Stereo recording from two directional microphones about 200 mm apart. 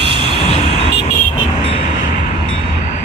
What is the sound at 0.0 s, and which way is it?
Vehicle, 25° right (ahead or behind).